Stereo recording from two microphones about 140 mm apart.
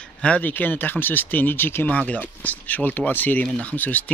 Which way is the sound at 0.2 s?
10° left (ahead or behind).